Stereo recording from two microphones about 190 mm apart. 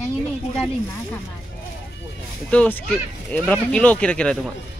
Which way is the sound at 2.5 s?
10° left (ahead or behind).